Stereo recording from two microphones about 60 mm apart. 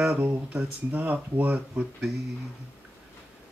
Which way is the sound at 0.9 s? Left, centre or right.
Right.